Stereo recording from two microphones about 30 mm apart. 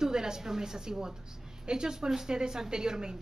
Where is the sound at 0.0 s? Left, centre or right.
Right.